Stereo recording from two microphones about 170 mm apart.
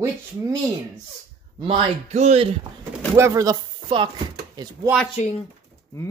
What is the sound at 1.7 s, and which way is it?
Speech, 40° right (ahead or behind).